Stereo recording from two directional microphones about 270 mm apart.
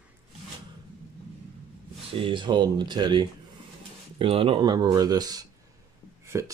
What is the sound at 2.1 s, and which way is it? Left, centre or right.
Speech, centre.